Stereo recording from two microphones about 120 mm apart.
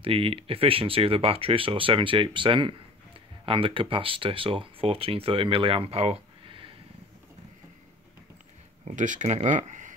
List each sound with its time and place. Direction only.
0.0 s speech: 50° right (ahead or behind)
8.8 s speech: 90° right